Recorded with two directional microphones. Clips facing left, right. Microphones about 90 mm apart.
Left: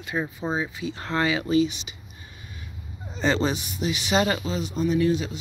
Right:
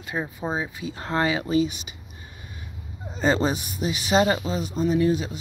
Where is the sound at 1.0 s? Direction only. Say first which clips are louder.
Right 1 dB; 35° right (ahead or behind).